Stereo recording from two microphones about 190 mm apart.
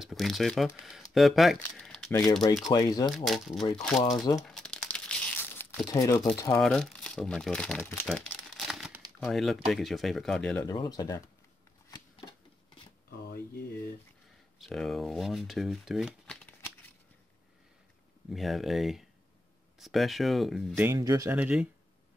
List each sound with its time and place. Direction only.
0.0 s speech: centre (ahead or behind)
2.7 s speech: 20° left (ahead or behind)
3.1 s speech: centre (ahead or behind)
4.5 s crumpling: 5° left (ahead or behind)
6.3 s speech: 15° left (ahead or behind)
6.6 s speech: 5° left (ahead or behind)
8.1 s crumpling: centre (ahead or behind)
9.2 s speech: centre (ahead or behind)
10.7 s speech: 20° left (ahead or behind)
11.9 s a sound: 25° left (ahead or behind)
14.6 s speech: centre (ahead or behind)
18.3 s speech: centre (ahead or behind)
20.7 s speech: 15° right (ahead or behind)
21.3 s speech: 5° right (ahead or behind)